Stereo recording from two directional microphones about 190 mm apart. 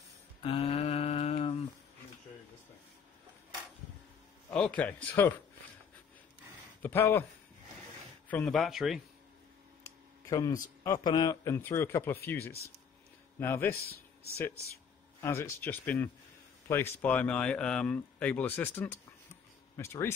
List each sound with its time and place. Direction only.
0.4 s a sound: 30° left (ahead or behind)
4.6 s speech: 5° left (ahead or behind)
6.8 s speech: 10° left (ahead or behind)
8.3 s speech: 5° left (ahead or behind)
10.3 s speech: 15° left (ahead or behind)
13.7 s speech: 55° left (ahead or behind)
15.1 s speech: 15° left (ahead or behind)